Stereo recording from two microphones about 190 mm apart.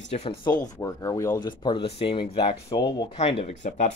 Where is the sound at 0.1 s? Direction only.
30° left (ahead or behind).